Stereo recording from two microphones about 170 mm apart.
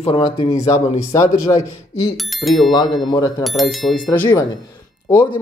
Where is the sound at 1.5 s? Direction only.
20° left (ahead or behind).